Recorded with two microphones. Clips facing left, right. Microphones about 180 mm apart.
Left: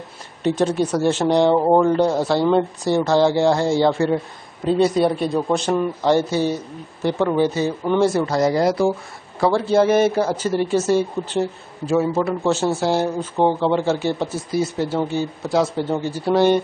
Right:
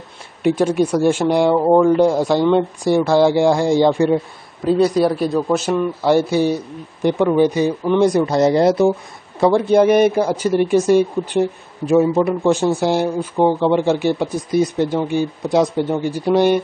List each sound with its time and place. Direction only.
0.4 s speech: 10° right (ahead or behind)
1.6 s speech: 5° left (ahead or behind)
1.9 s speech: 10° right (ahead or behind)
4.6 s speech: centre (ahead or behind)